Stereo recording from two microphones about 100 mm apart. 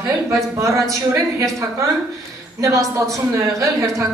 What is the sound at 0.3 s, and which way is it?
A woman's voice, 30° right (ahead or behind).